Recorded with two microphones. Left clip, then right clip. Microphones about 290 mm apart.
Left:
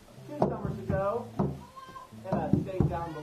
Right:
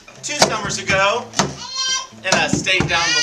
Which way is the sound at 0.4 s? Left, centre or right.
Right.